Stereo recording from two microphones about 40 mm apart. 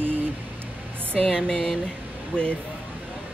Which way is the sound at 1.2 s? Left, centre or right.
Centre.